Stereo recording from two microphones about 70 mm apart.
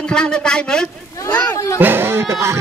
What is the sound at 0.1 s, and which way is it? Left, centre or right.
Speech, centre.